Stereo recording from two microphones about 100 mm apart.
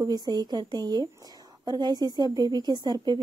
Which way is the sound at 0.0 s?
45° right (ahead or behind).